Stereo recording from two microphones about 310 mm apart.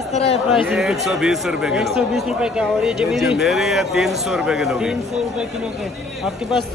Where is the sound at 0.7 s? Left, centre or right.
Centre.